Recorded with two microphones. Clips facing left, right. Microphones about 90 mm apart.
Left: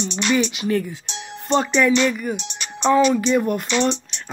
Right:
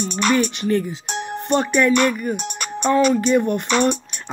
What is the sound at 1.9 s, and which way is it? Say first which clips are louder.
Speech: right 1 dB; 55° right (ahead or behind).